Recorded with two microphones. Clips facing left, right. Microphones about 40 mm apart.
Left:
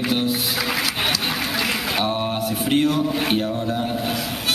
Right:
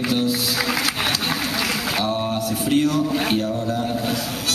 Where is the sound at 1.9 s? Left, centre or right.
Left.